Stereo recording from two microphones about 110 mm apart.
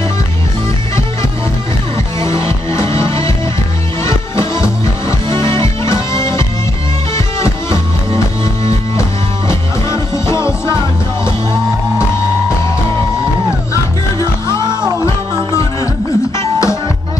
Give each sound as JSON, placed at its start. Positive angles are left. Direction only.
{"t": 2.1, "sound": "music", "side_deg": 30}
{"t": 7.2, "sound": "music", "side_deg": 25}
{"t": 9.5, "sound": "music", "side_deg": 25}
{"t": 14.5, "sound": "music", "side_deg": -40}
{"t": 15.0, "sound": "music", "side_deg": 25}